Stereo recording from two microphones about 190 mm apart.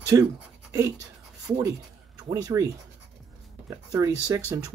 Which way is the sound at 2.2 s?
20° right (ahead or behind).